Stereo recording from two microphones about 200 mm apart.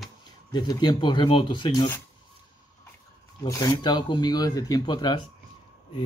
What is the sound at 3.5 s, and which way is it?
Speech, 20° left (ahead or behind).